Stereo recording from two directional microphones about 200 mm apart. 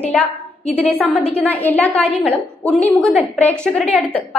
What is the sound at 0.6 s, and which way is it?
Speech, 30° left (ahead or behind).